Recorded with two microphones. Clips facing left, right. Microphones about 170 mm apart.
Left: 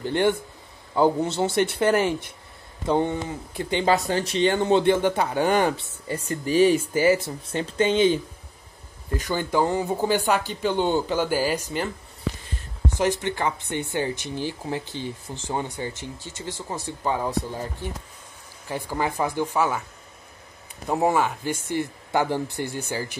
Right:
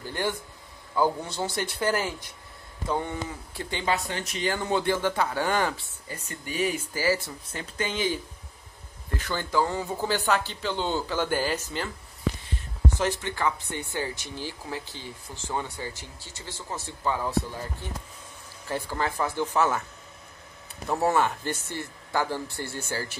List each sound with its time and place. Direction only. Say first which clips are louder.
0.0 s speech: left 8 dB; 25° left (ahead or behind)
3.8 s speech: left 7 dB; 35° left (ahead or behind); by 6.1 s 20° left (ahead or behind)
6.1 s speech: left 11 dB; 35° left (ahead or behind); by 11.9 s 15° left (ahead or behind)
12.9 s speech: left 7 dB; 15° left (ahead or behind)
18.7 s speech: left 2 dB; 15° left (ahead or behind)
20.9 s speech: left 2 dB; 15° left (ahead or behind)